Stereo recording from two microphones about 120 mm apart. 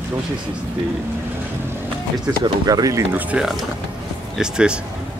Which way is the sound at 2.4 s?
30° right (ahead or behind).